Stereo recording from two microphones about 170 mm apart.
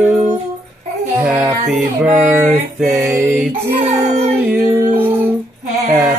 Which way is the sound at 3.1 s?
15° right (ahead or behind).